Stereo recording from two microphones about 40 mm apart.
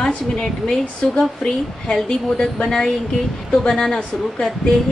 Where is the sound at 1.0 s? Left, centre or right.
Left.